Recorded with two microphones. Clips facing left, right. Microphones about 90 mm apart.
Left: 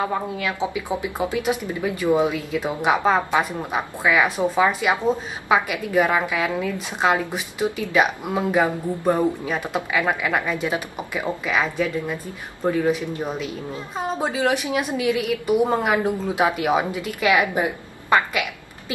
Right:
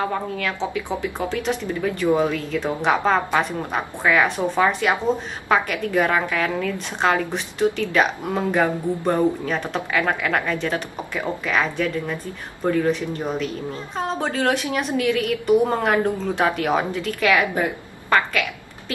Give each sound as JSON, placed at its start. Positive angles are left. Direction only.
{"t": 0.0, "sound": "speech", "side_deg": 15}